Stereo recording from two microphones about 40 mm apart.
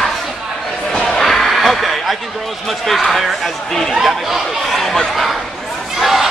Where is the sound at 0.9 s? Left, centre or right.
Centre.